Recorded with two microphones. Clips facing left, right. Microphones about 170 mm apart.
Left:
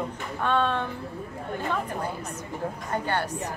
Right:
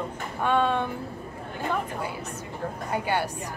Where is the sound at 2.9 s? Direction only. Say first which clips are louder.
Right 1 dB; 10° right (ahead or behind).